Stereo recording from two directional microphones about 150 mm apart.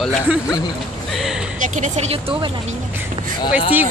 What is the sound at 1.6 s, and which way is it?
Speech, 50° right (ahead or behind).